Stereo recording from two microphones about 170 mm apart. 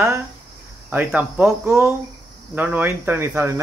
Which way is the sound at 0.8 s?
10° right (ahead or behind).